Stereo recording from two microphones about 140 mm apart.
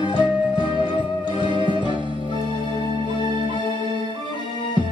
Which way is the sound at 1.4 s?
35° right (ahead or behind).